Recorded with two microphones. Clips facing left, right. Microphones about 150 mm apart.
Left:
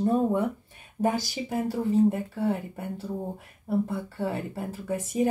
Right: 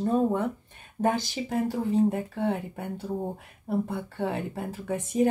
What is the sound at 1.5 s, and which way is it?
A woman's voice, centre (ahead or behind).